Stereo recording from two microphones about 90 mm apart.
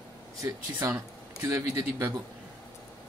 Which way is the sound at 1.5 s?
35° right (ahead or behind).